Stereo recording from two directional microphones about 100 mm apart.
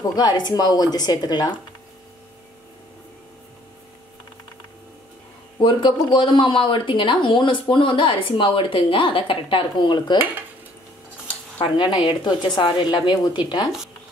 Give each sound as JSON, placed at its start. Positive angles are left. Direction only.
{"t": 0.1, "sound": "a woman's voice", "side_deg": 45}
{"t": 5.6, "sound": "speech", "side_deg": 50}
{"t": 11.6, "sound": "a woman's voice", "side_deg": 50}